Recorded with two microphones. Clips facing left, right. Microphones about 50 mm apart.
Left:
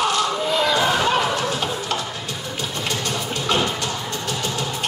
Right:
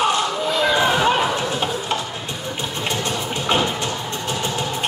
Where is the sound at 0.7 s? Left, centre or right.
Right.